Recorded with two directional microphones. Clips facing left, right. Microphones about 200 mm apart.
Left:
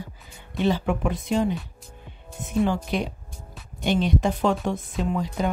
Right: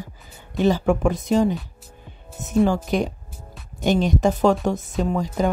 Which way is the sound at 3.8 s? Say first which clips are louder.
Right 3 dB; 45° right (ahead or behind).